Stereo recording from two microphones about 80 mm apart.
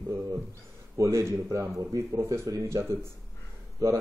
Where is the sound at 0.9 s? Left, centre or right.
Right.